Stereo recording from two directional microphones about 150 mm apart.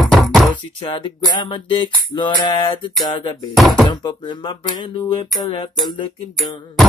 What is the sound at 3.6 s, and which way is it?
Music, centre (ahead or behind).